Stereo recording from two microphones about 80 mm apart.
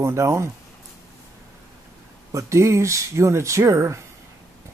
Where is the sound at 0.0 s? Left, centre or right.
Right.